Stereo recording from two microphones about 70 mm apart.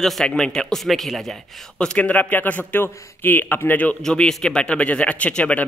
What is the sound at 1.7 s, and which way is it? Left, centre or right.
Speech, centre.